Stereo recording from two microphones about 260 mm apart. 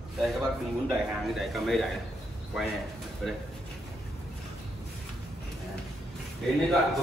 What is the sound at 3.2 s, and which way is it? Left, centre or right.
Speech, centre.